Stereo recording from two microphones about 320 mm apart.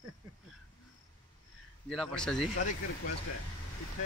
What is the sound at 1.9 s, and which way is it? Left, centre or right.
Speech, centre.